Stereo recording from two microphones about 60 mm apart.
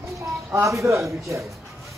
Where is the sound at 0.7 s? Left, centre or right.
Right.